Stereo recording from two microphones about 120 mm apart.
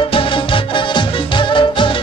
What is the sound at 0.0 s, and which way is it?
Music, 45° left (ahead or behind).